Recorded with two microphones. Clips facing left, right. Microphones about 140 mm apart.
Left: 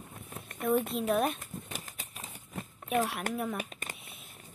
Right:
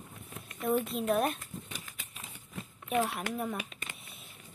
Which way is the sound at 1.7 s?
40° left (ahead or behind).